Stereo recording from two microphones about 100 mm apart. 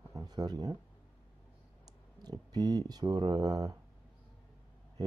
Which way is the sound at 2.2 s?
40° right (ahead or behind).